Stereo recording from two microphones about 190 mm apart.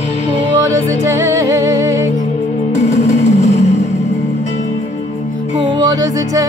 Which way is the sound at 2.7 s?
40° left (ahead or behind).